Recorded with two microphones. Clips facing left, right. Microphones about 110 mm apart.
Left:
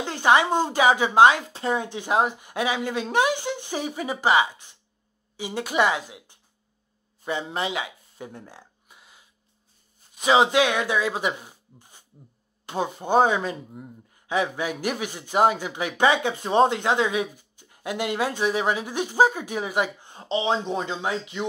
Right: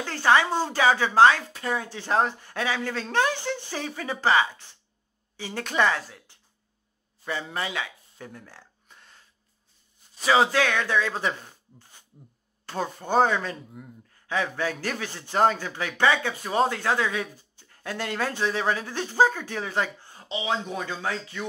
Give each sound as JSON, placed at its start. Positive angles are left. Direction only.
{"t": 0.0, "sound": "a man's voice", "side_deg": 15}
{"t": 8.5, "sound": "music", "side_deg": 15}
{"t": 10.1, "sound": "a man's voice", "side_deg": 20}
{"t": 20.2, "sound": "speech", "side_deg": 35}
{"t": 20.5, "sound": "speech", "side_deg": 25}